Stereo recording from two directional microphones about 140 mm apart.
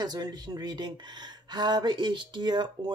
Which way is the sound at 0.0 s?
30° right (ahead or behind).